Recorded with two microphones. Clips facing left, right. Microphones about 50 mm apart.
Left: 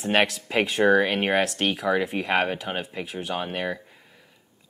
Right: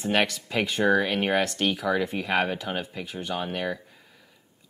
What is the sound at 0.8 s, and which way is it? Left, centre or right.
Speech, left.